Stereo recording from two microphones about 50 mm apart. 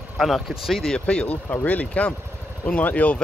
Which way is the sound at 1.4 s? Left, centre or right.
Left.